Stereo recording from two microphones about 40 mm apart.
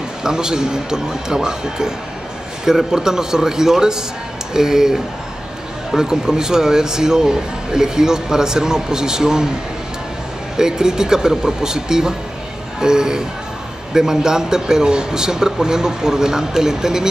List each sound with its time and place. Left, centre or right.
0.2 s speech: centre
10.6 s speech: centre